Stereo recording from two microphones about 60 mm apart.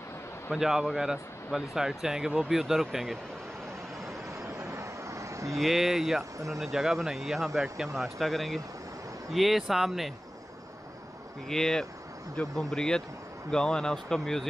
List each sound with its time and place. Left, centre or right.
0.5 s speech: centre
4.4 s vehicle: right
5.6 s speech: centre
11.4 s speech: centre